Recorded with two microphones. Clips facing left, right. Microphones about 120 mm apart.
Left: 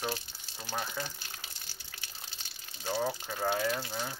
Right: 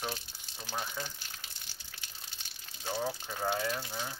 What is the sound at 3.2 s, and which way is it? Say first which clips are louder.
Speech: left 2 dB; centre (ahead or behind).